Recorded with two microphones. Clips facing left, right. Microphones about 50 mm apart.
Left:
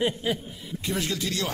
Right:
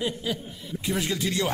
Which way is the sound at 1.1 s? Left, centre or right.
Centre.